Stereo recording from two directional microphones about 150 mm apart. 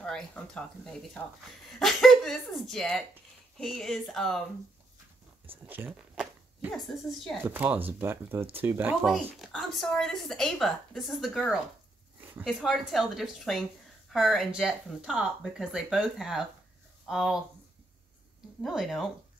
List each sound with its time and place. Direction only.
0.0 s speech: 5° left (ahead or behind)
1.8 s a woman's voice: centre (ahead or behind)
5.5 s speech: 15° right (ahead or behind)
7.4 s speech: 10° right (ahead or behind)
9.0 s a woman's voice: centre (ahead or behind)
12.2 s a sound: 15° right (ahead or behind)
12.5 s a woman's voice: centre (ahead or behind)
18.6 s a woman's voice: centre (ahead or behind)